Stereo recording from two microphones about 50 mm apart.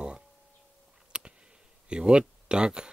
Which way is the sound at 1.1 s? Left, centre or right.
Centre.